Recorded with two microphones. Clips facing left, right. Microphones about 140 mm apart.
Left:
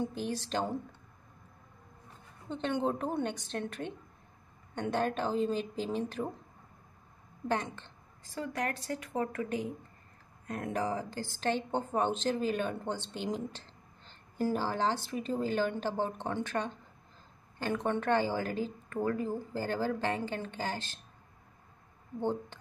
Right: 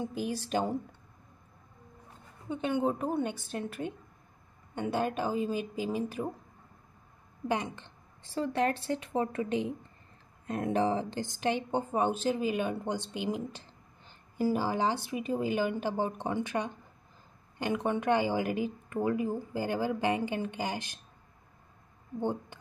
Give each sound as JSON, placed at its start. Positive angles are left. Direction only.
{"t": 0.0, "sound": "a woman's voice", "side_deg": -10}
{"t": 2.5, "sound": "a woman's voice", "side_deg": -5}
{"t": 7.4, "sound": "a woman's voice", "side_deg": -10}
{"t": 8.2, "sound": "a woman's voice", "side_deg": -30}
{"t": 22.2, "sound": "a woman's voice", "side_deg": -15}